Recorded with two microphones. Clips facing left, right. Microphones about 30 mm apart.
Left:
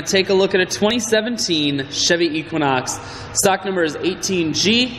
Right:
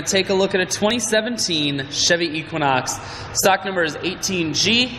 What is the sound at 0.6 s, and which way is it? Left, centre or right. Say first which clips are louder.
A man's voice: left 2 dB; centre.